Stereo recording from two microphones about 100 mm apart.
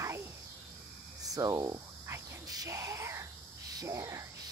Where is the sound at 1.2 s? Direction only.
35° right (ahead or behind).